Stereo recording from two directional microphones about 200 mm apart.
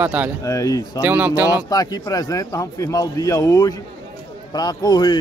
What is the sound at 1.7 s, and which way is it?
A man's voice, 20° left (ahead or behind).